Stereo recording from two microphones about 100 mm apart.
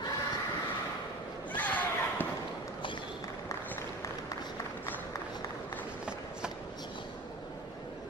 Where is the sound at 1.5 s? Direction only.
15° left (ahead or behind).